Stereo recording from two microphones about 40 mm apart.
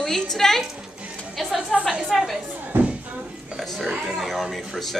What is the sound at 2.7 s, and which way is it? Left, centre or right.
Music, right.